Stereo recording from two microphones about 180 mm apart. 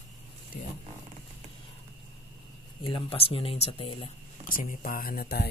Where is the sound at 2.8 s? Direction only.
30° left (ahead or behind).